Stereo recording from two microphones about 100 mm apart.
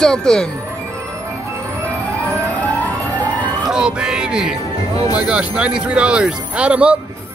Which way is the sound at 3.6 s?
5° right (ahead or behind).